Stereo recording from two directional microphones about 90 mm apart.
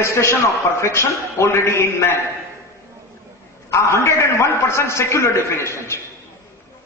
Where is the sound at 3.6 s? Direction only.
30° left (ahead or behind).